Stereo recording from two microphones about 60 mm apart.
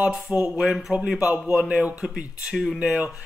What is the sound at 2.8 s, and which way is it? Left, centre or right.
Speech, centre.